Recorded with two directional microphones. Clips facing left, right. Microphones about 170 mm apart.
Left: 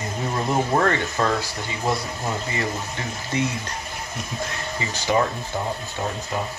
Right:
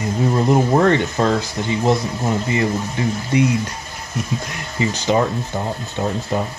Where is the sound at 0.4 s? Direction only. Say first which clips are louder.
Right 5 dB; 20° right (ahead or behind).